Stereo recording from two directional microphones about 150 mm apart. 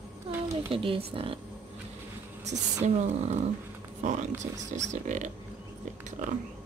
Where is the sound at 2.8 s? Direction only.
50° right (ahead or behind).